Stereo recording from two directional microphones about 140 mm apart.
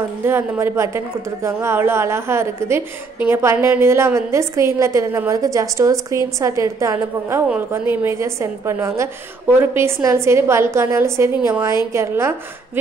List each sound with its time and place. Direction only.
0.2 s a woman's voice: 15° right (ahead or behind)